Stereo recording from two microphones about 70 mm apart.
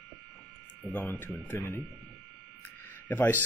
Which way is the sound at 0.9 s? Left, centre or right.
Left.